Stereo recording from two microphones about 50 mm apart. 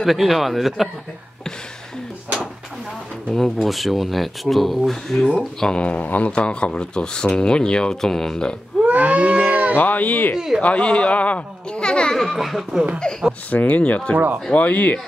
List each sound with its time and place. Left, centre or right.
0.0 s speech: centre
3.3 s speech: centre
5.8 s a child's voice: left
8.8 s livestock: right
9.8 s speech: left
10.3 s speech: centre
10.6 s a child's voice: left
12.2 s speech: centre
13.0 s speech: centre
13.5 s a child's voice: left
14.1 s speech: right
14.5 s speech: left